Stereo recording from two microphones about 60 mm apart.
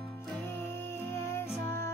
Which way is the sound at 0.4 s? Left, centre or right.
Left.